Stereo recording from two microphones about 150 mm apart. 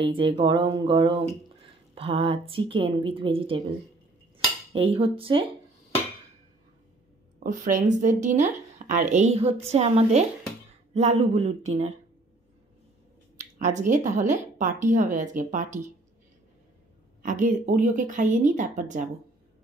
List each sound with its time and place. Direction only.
0.0 s a woman's voice: 35° right (ahead or behind)
4.7 s a woman's voice: 40° right (ahead or behind)
7.4 s a woman's voice: 60° right (ahead or behind)
13.4 s speech: 55° right (ahead or behind)
17.2 s speech: 60° right (ahead or behind)